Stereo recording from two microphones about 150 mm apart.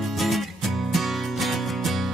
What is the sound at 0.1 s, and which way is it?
Music, centre (ahead or behind).